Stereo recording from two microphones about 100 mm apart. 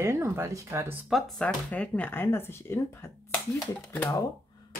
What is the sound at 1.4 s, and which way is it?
Speech, 10° left (ahead or behind).